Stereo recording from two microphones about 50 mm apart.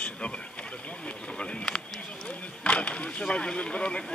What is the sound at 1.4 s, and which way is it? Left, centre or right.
Speech, centre.